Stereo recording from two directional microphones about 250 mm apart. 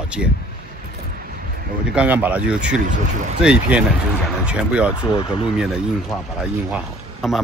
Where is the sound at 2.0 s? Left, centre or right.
Centre.